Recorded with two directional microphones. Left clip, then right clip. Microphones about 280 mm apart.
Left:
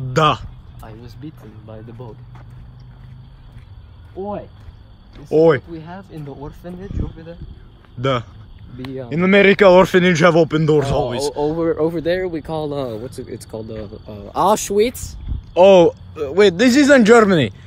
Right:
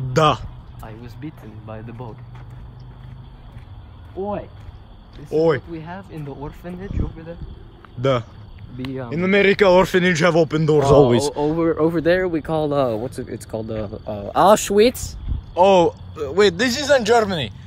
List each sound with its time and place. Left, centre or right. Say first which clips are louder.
0.1 s a sound: left 1 dB; centre
1.7 s a man's voice: right 2 dB; centre
4.2 s a man's voice: right 1 dB; centre
11.1 s speech: right 1 dB; right
11.5 s a man's voice: even; centre
12.0 s speech: right 2 dB; centre
13.8 s speech: right 6 dB; centre
15.5 s a man's voice: left 4 dB; centre
16.7 s a man's voice: left 5 dB; centre